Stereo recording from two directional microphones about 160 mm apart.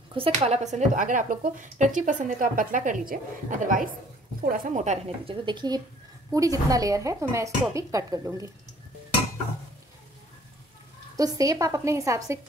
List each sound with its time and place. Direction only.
0.1 s a woman's voice: 40° right (ahead or behind); by 8.5 s 20° right (ahead or behind)
11.1 s a woman's voice: 20° right (ahead or behind)